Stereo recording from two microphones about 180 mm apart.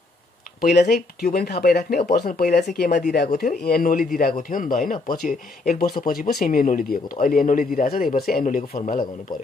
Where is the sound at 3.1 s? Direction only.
55° left (ahead or behind).